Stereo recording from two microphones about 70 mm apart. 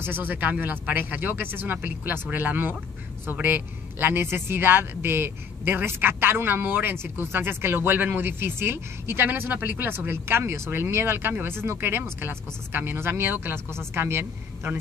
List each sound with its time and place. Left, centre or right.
0.0 s a woman's voice: right